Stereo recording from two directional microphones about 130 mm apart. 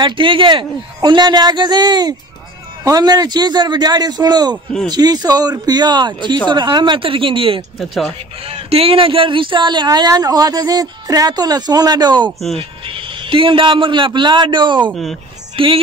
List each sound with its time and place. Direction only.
0.0 s a woman's voice: 40° right (ahead or behind)
7.8 s speech: centre (ahead or behind)
8.4 s a woman's voice: 45° right (ahead or behind)